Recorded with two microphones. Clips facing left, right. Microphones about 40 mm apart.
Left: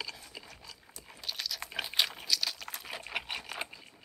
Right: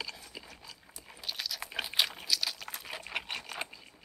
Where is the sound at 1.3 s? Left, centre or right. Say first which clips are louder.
Even; centre.